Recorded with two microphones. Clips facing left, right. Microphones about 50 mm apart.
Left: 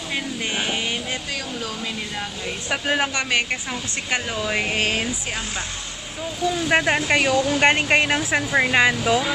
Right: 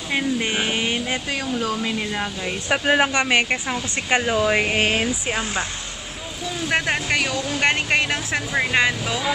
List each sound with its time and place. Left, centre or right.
0.1 s vehicle: centre
1.8 s speech: right
5.0 s speech: centre
6.7 s speech: centre